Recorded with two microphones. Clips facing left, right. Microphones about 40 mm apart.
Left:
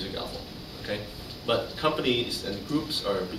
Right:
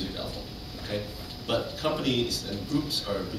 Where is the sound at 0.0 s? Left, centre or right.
Centre.